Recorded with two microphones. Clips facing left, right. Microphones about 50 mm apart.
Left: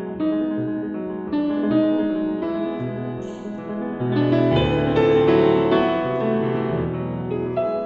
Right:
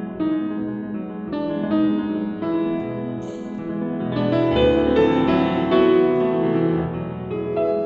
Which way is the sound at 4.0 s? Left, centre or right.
Centre.